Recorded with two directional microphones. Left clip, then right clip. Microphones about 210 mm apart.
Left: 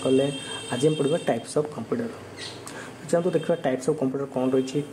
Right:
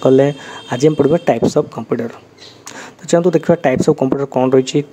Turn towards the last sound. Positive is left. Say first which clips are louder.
# right 11 dB
turn(degrees=-35)  # may be behind; listen again after turning